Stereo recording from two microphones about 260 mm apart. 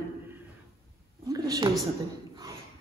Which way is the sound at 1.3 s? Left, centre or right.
Centre.